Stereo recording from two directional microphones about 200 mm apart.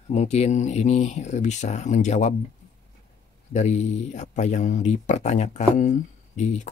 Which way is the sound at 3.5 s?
35° left (ahead or behind).